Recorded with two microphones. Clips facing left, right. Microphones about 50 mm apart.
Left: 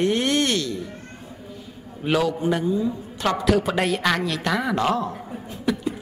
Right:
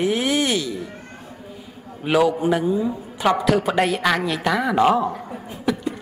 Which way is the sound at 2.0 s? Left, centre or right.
Centre.